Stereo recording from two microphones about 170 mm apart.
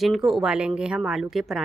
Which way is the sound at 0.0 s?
Centre (ahead or behind).